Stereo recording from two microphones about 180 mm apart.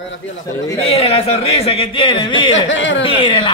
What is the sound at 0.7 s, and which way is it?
Speech, 30° left (ahead or behind).